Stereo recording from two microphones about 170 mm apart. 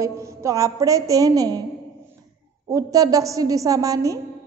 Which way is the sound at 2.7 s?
20° right (ahead or behind).